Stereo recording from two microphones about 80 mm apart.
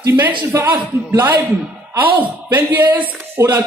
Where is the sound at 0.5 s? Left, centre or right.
Right.